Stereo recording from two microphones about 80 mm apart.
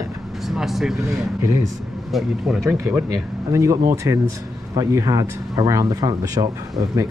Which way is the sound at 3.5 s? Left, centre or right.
Right.